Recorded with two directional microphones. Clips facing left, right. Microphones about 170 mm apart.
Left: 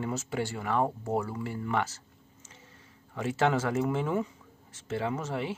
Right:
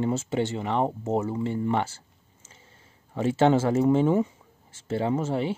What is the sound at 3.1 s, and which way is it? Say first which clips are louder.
Speech: right 6 dB; 30° right (ahead or behind).